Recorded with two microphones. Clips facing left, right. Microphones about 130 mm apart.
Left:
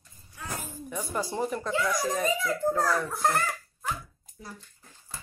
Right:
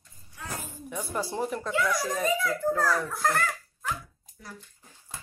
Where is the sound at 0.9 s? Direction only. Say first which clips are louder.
Even; centre (ahead or behind).